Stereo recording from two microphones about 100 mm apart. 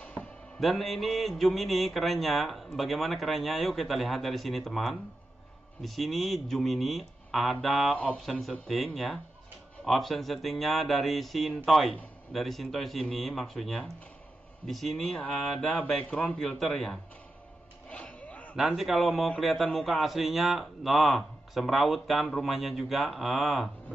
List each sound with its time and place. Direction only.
0.0 s music: 15° left (ahead or behind)
0.6 s mantra: centre (ahead or behind)
15.7 s speech: 15° left (ahead or behind)
16.3 s mantra: 5° left (ahead or behind)
17.8 s a sound: 15° left (ahead or behind)
18.6 s mantra: 5° right (ahead or behind)